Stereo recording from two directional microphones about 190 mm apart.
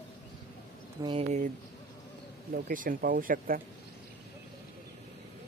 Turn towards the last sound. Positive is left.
turn(degrees=-45)  # may be behind; listen again after turning